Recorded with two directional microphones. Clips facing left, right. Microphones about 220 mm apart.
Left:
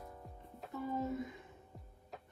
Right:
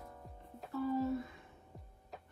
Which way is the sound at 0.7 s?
20° left (ahead or behind).